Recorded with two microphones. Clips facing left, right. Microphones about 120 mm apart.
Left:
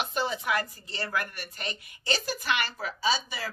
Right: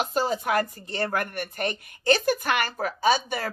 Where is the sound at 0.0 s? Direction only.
40° right (ahead or behind).